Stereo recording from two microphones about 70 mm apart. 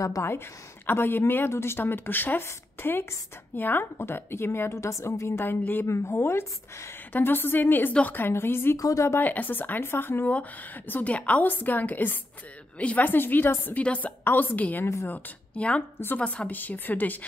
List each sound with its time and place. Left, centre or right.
0.0 s a woman's voice: left
0.8 s a woman's voice: left
5.9 s a woman's voice: left
8.7 s speech: left
9.2 s a woman's voice: left